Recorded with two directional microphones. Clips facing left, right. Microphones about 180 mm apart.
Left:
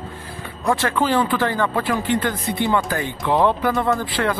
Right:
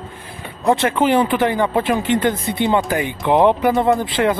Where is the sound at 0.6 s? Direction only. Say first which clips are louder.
Right 4 dB; 20° right (ahead or behind).